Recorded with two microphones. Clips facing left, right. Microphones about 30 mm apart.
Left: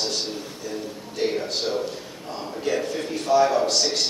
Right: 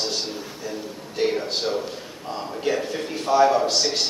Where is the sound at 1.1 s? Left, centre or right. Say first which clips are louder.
Right 2 dB; centre.